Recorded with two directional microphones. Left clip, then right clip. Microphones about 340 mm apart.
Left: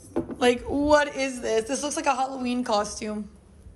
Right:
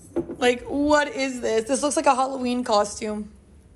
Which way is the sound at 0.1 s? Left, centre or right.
Centre.